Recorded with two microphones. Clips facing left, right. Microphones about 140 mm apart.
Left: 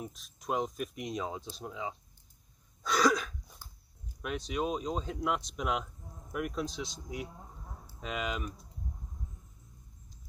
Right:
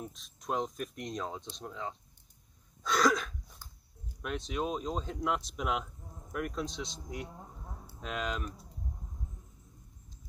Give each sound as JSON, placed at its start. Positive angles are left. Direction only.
{"t": 0.0, "sound": "speech", "side_deg": 0}
{"t": 2.8, "sound": "throat clearing", "side_deg": 0}
{"t": 4.2, "sound": "speech", "side_deg": 0}